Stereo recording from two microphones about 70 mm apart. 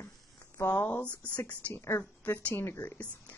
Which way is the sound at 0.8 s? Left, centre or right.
Left.